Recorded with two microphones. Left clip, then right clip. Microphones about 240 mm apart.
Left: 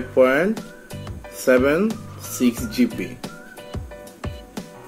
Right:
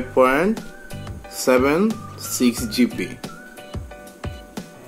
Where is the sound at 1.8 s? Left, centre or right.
Centre.